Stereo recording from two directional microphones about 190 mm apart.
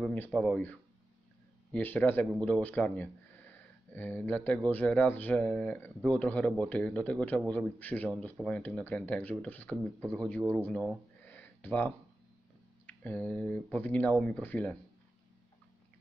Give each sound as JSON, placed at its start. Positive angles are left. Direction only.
{"t": 0.0, "sound": "speech", "side_deg": 5}
{"t": 11.2, "sound": "a sound", "side_deg": 10}
{"t": 12.8, "sound": "speech", "side_deg": 10}